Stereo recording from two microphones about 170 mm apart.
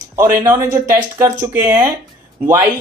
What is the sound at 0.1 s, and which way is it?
Speech, 20° right (ahead or behind).